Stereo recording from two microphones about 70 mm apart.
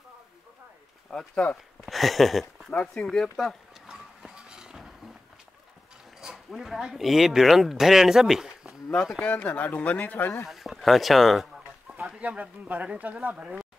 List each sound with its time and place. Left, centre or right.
1.1 s speech: centre
1.9 s a sound: centre
2.7 s speech: centre
3.1 s a sound: centre
3.8 s a sound: centre
6.2 s speech: centre
9.2 s speech: left
10.4 s speech: centre
12.2 s speech: centre